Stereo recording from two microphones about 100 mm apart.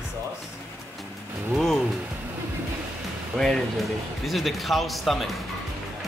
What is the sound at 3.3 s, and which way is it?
Speech, 5° left (ahead or behind).